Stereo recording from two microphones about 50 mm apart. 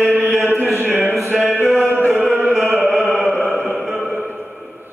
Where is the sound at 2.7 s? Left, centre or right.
Centre.